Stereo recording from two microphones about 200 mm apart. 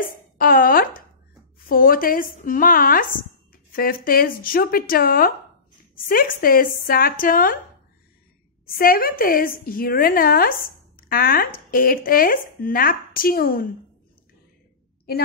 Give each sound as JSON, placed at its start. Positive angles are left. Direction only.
{"t": 0.4, "sound": "speech", "side_deg": 45}
{"t": 8.7, "sound": "speech", "side_deg": 45}
{"t": 15.1, "sound": "a woman's voice", "side_deg": 50}